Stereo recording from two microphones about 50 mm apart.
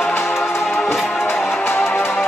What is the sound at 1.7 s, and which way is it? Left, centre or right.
Music, left.